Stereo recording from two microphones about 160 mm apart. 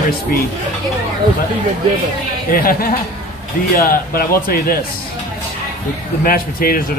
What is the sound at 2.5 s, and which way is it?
Speech, 65° left (ahead or behind).